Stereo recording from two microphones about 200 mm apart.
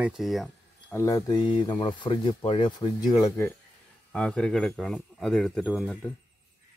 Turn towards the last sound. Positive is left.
turn(degrees=0)  # may be behind; listen again after turning